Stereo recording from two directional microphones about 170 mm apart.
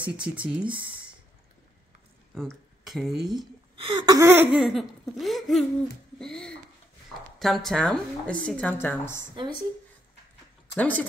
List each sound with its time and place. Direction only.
0.0 s speech: 10° right (ahead or behind)
2.3 s speech: 5° left (ahead or behind)
3.3 s speech: 30° right (ahead or behind)
4.1 s a woman's voice: 15° right (ahead or behind); by 9.2 s 15° left (ahead or behind)
9.3 s speech: 30° right (ahead or behind)
10.8 s speech: 10° left (ahead or behind)